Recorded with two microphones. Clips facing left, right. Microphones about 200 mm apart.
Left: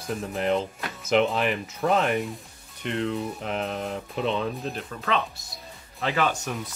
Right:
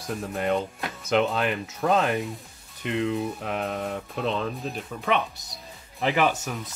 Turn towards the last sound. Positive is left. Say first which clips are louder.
# even
turn(degrees=-5)  # may be behind; listen again after turning